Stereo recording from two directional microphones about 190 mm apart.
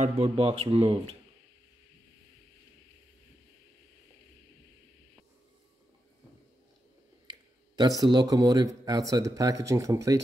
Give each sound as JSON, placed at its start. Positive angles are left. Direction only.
{"t": 0.0, "sound": "speech", "side_deg": -30}
{"t": 7.7, "sound": "speech", "side_deg": -20}